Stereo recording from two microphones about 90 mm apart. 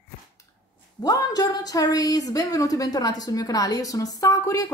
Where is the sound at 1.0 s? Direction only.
45° left (ahead or behind).